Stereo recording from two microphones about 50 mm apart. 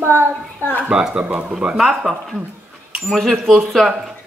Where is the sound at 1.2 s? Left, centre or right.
Right.